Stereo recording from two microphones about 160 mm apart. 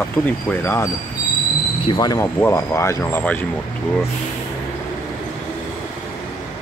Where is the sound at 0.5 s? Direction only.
15° left (ahead or behind).